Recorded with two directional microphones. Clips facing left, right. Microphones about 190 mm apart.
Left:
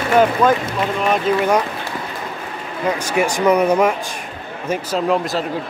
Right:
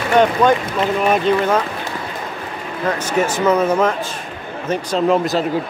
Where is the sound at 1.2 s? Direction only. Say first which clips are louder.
Even; 10° left (ahead or behind).